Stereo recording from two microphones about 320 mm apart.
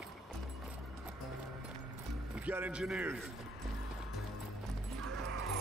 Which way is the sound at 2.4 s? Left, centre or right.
Centre.